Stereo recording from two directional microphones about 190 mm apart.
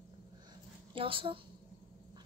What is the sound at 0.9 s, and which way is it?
Speech, 25° right (ahead or behind).